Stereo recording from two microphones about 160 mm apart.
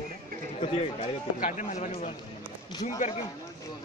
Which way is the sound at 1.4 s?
50° left (ahead or behind).